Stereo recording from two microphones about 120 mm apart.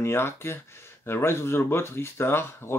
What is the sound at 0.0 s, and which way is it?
Speech, 20° left (ahead or behind).